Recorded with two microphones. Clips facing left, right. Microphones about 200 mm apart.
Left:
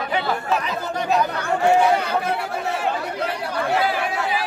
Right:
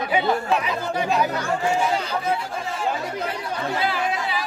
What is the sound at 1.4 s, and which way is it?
Speech, 65° left (ahead or behind).